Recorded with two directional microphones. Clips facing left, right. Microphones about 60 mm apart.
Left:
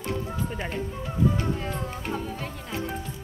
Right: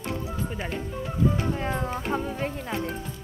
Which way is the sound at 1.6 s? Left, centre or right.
Right.